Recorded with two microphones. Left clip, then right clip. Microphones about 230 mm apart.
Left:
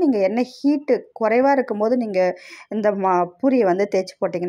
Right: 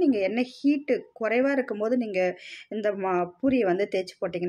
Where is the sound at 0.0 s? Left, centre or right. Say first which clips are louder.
Left 6 dB; centre.